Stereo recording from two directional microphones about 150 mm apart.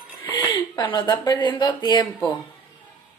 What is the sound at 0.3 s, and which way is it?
Speech, 30° left (ahead or behind).